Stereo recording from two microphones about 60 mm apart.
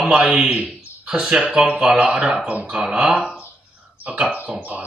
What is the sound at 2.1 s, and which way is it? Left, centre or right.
A man's voice, centre.